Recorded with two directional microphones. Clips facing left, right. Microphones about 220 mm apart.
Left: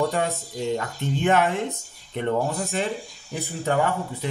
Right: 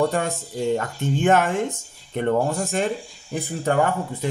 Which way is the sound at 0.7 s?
45° right (ahead or behind).